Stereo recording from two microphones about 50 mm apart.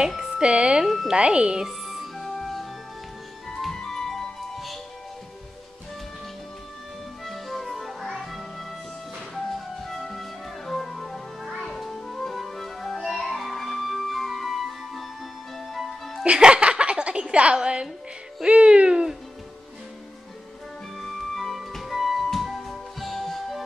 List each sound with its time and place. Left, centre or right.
0.4 s speech: right
0.8 s speech: centre
1.1 s speech: right
1.7 s music: centre
7.2 s music: centre
16.3 s music: centre
21.0 s music: centre